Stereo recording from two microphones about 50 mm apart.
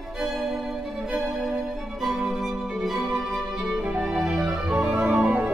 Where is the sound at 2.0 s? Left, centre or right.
Centre.